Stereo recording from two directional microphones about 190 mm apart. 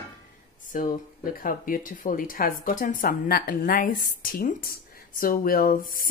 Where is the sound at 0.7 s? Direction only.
45° left (ahead or behind).